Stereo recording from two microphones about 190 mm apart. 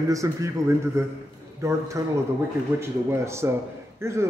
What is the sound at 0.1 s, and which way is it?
A man's voice, 15° right (ahead or behind).